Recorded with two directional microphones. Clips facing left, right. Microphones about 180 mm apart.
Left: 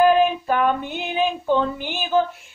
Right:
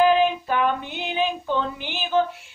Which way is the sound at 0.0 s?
45° left (ahead or behind).